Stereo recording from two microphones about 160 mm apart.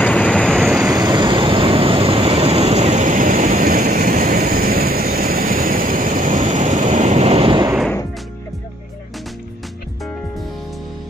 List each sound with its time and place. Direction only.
0.0 s vehicle: 5° left (ahead or behind)
0.9 s vehicle: 25° right (ahead or behind)